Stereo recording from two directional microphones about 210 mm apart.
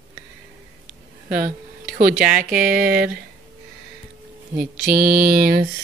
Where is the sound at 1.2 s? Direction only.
40° right (ahead or behind).